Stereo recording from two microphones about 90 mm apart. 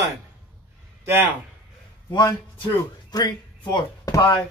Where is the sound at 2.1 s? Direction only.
60° left (ahead or behind).